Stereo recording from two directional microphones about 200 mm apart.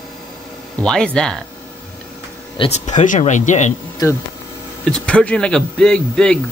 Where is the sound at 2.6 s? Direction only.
35° left (ahead or behind).